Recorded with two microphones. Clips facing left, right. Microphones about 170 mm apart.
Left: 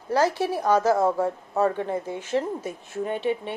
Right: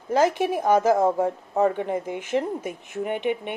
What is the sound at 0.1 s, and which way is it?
Speech, 20° right (ahead or behind).